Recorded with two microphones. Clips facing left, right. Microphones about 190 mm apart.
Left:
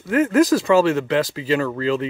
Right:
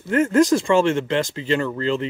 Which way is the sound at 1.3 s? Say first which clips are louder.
Left 1 dB; 10° left (ahead or behind).